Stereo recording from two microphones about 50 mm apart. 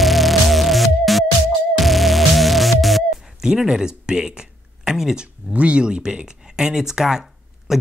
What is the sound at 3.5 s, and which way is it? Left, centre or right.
Speech, centre.